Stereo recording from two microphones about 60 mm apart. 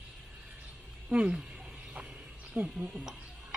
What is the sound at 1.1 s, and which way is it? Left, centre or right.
Speech, centre.